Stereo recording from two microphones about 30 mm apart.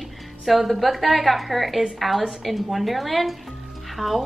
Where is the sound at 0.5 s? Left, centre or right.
Centre.